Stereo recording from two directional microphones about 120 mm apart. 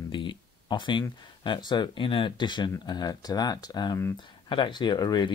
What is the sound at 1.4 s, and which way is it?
Speech, 40° left (ahead or behind).